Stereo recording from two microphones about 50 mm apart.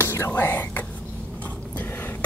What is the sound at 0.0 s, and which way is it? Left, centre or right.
Whispering, left.